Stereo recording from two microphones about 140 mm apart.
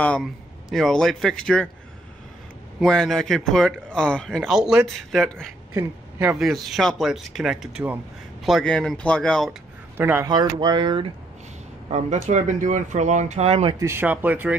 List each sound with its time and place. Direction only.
0.2 s speech: centre (ahead or behind)
2.8 s speech: 5° left (ahead or behind)
5.8 s speech: 10° right (ahead or behind)
6.4 s speech: centre (ahead or behind)
8.5 s speech: centre (ahead or behind)
9.9 s speech: 15° right (ahead or behind)
10.2 s speech: 30° right (ahead or behind)
11.9 s speech: 55° right (ahead or behind)
13.7 s speech: 15° right (ahead or behind)